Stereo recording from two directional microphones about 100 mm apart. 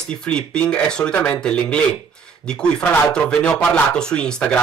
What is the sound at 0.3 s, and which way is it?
Speech, 10° left (ahead or behind).